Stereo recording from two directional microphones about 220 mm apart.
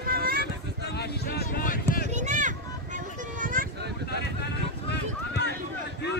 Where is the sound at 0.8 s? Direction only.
50° left (ahead or behind).